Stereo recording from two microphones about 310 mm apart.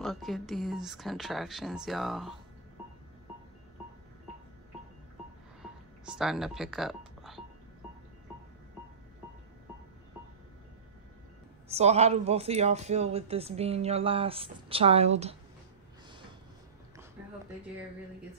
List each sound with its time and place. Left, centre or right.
0.0 s speech: centre
5.6 s music: centre
11.7 s speech: centre